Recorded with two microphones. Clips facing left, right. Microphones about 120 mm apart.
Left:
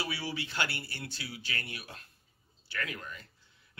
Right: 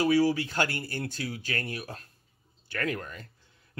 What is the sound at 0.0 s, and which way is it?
Speech, 45° right (ahead or behind).